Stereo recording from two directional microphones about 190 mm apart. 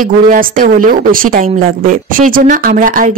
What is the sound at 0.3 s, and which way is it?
Speech, 45° right (ahead or behind).